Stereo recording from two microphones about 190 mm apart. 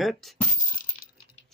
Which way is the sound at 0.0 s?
Centre (ahead or behind).